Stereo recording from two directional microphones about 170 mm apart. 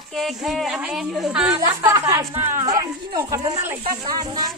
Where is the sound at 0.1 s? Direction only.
Centre (ahead or behind).